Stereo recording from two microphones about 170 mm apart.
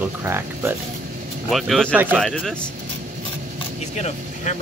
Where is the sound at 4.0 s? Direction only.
40° left (ahead or behind).